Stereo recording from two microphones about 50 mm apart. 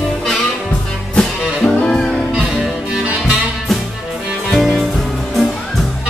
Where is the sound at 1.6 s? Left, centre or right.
Left.